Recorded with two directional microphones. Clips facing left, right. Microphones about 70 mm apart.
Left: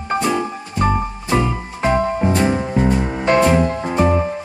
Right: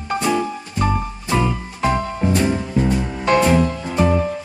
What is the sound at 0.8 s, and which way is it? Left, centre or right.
Music, left.